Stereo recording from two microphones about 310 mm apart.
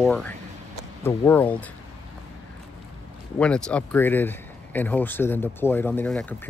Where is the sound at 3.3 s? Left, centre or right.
Centre.